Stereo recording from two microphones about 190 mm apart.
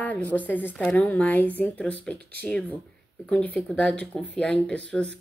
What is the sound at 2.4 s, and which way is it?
A woman's voice, 5° left (ahead or behind).